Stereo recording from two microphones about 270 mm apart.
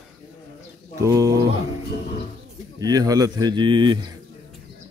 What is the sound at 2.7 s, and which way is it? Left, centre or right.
Speech, centre.